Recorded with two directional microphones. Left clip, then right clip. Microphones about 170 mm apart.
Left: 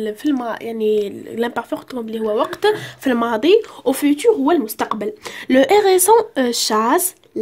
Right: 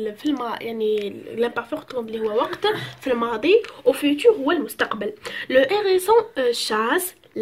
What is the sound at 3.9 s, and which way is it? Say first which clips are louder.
Speech: left 2 dB; 70° left (ahead or behind).